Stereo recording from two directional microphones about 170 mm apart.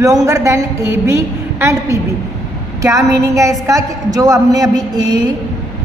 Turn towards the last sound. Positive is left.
turn(degrees=-25)  # may be behind; listen again after turning